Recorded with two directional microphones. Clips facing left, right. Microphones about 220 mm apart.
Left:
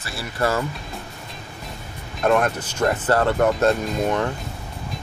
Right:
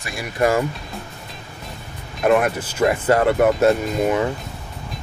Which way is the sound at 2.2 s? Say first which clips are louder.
Right 2 dB; 5° right (ahead or behind).